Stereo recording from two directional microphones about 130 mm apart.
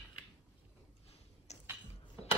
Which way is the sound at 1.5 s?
55° left (ahead or behind).